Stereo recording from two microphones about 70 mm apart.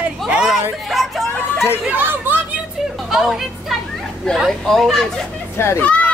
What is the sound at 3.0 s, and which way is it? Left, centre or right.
Speech, centre.